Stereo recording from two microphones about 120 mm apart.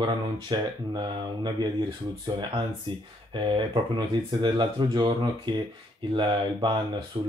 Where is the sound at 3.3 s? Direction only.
45° right (ahead or behind).